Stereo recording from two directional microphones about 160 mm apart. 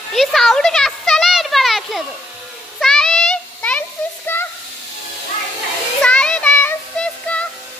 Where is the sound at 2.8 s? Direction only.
5° left (ahead or behind).